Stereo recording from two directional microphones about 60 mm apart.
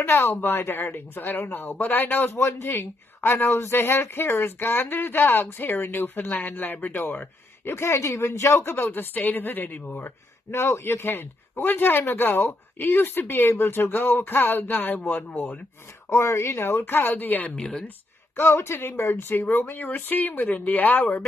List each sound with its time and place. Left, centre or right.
0.0 s speech: left
2.3 s speech: left
3.4 s speech: left
9.1 s speech: left
16.1 s speech: left
17.6 s speech: centre
17.8 s speech: left